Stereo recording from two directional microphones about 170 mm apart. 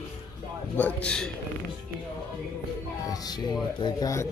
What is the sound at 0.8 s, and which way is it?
Speech, 10° left (ahead or behind).